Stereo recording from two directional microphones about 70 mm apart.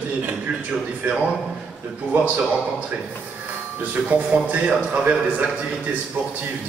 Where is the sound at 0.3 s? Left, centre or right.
Right.